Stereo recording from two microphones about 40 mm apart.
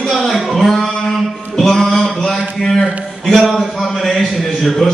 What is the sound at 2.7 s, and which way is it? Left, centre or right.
A man's voice, centre.